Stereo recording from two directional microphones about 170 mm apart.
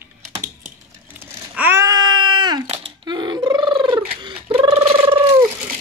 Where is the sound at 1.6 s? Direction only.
15° right (ahead or behind).